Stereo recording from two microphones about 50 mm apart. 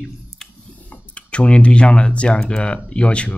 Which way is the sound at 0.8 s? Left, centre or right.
Left.